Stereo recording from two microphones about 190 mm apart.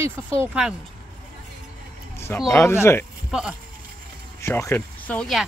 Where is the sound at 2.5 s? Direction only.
15° left (ahead or behind).